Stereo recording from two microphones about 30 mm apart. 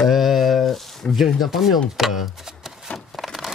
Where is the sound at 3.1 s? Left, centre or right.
Centre.